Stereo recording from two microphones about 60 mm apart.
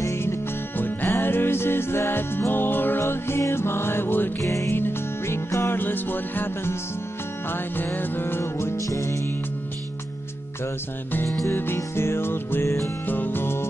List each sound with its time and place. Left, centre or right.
0.0 s music: left
4.4 s music: left
4.6 s music: left
11.5 s music: left
12.6 s music: left
13.0 s music: left